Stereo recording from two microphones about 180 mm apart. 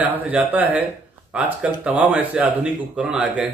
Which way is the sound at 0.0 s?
10° right (ahead or behind).